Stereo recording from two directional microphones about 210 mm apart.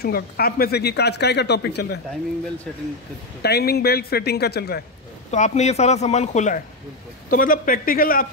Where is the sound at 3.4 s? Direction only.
50° left (ahead or behind).